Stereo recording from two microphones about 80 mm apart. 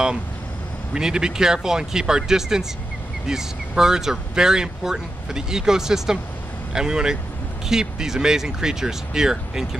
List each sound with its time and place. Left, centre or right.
0.9 s speech: centre